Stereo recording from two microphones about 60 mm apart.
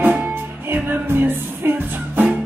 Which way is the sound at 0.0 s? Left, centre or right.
Right.